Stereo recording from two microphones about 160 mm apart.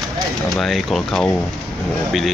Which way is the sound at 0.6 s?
Centre (ahead or behind).